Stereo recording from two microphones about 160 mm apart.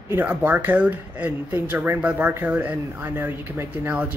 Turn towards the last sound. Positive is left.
turn(degrees=-10)  # may be behind; listen again after turning